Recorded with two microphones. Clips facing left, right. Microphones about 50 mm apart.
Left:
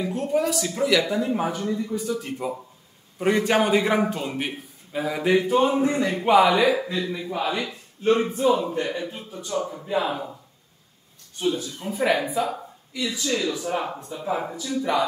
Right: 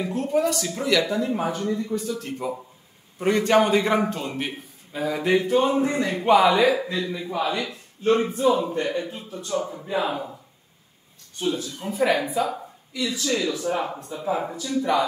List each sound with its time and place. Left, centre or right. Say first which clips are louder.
0.1 s a man's voice: right 2 dB; centre
8.0 s a man's voice: even; centre
11.3 s a man's voice: left 1 dB; centre